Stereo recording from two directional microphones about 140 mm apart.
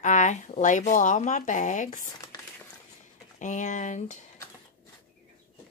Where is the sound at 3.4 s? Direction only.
60° left (ahead or behind).